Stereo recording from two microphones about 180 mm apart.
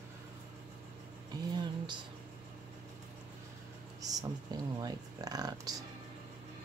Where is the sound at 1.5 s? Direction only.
25° right (ahead or behind).